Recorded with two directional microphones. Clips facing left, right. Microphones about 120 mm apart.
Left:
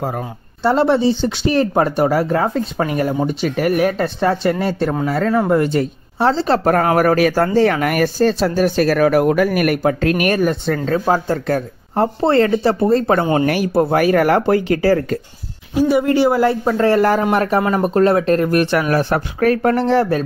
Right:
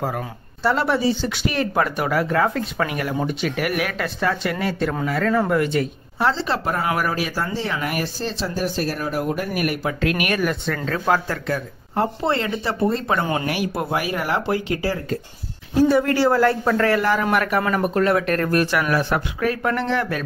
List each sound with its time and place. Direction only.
0.7 s speech: 25° left (ahead or behind)
6.6 s speech: 50° left (ahead or behind)
10.0 s speech: 40° left (ahead or behind)
13.5 s speech: 40° left (ahead or behind)
13.9 s speech: 50° left (ahead or behind)
15.7 s speech: 15° left (ahead or behind)
16.9 s speech: 45° left (ahead or behind)
17.2 s speech: 30° left (ahead or behind)
18.9 s speech: 40° left (ahead or behind)